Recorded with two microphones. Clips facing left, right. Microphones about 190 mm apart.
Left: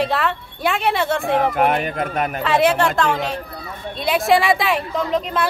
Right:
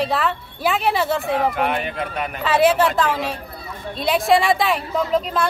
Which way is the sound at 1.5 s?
45° left (ahead or behind).